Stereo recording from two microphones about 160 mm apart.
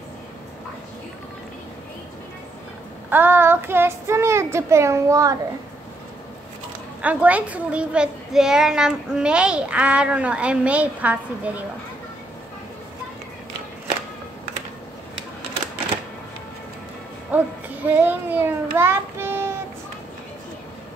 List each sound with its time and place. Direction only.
3.1 s a child's voice: 15° right (ahead or behind)
7.0 s a child's voice: 10° right (ahead or behind)
17.3 s music: 10° right (ahead or behind)
17.8 s child singing: 10° right (ahead or behind)